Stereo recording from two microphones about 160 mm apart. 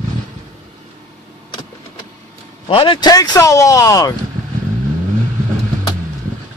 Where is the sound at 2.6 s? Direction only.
30° left (ahead or behind).